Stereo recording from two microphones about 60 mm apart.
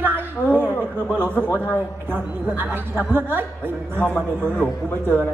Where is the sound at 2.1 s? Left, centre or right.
Right.